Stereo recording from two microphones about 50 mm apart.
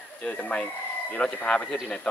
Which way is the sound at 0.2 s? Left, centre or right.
Left.